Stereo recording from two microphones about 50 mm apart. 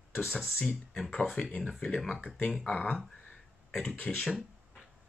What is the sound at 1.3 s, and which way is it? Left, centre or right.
Speech, centre.